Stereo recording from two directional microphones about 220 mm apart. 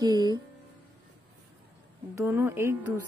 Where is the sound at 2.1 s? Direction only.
10° right (ahead or behind).